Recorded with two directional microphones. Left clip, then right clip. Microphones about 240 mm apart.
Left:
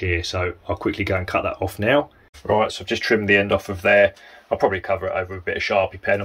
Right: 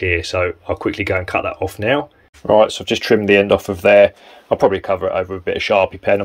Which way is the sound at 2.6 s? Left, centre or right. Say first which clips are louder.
Right 7 dB; right.